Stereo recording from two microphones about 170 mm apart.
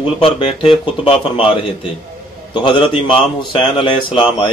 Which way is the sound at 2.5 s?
30° left (ahead or behind).